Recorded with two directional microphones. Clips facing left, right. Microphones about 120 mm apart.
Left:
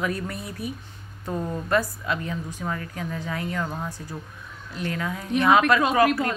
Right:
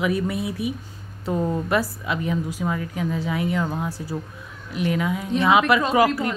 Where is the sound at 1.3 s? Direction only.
20° right (ahead or behind).